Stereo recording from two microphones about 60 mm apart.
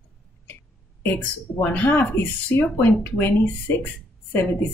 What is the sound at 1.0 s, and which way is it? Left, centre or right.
Speech, left.